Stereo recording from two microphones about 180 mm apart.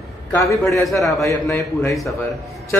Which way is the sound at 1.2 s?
15° left (ahead or behind).